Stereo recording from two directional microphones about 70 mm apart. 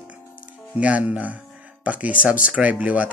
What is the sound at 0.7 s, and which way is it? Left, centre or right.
Speech, centre.